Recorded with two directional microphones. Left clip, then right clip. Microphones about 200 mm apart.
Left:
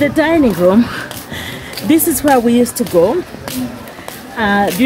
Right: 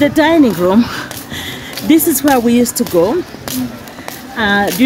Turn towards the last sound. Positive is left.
turn(degrees=-15)  # may be behind; listen again after turning